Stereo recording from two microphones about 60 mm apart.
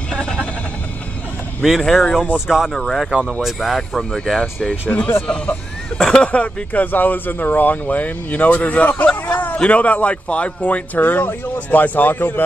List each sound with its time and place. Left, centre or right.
0.1 s bleat: centre
1.8 s speech: centre
2.3 s speech: centre
2.7 s speech: centre; by 12.4 s left